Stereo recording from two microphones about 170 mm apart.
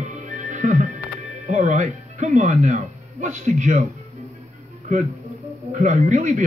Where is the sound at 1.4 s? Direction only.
45° right (ahead or behind).